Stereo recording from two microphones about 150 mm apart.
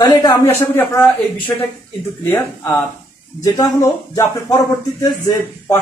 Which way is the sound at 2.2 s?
15° left (ahead or behind).